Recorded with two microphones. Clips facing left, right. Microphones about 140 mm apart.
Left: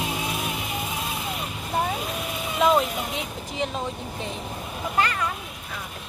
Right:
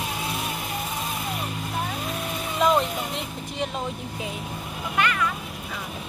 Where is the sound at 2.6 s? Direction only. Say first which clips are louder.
Left 1 dB; centre (ahead or behind).